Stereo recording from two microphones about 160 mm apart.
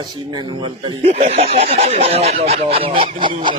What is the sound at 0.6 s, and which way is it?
Speech, 35° right (ahead or behind).